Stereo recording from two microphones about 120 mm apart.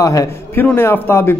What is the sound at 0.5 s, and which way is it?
Speech, 15° left (ahead or behind).